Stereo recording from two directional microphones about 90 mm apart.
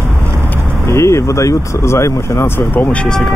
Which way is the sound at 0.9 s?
30° left (ahead or behind).